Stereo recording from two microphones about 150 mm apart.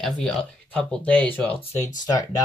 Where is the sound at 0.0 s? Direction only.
5° left (ahead or behind).